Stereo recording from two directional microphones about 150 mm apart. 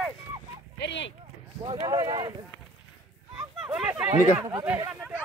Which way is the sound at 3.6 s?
10° right (ahead or behind).